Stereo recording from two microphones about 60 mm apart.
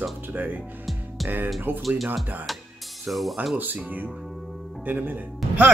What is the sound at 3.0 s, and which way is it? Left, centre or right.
Speech, centre.